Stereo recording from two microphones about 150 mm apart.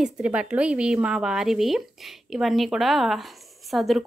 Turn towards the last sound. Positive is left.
turn(degrees=0)  # may be behind; listen again after turning